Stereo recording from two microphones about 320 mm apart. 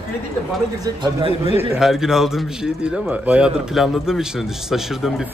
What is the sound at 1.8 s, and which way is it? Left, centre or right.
Speech, centre.